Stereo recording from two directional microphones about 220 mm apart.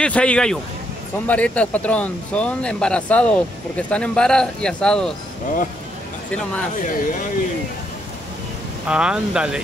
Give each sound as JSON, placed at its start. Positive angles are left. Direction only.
{"t": 0.0, "sound": "speech", "side_deg": 5}
{"t": 6.8, "sound": "speech", "side_deg": 40}
{"t": 8.8, "sound": "speech", "side_deg": -5}